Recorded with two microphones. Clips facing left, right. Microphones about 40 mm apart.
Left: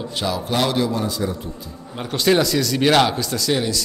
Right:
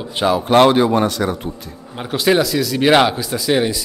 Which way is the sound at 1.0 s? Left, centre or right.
Right.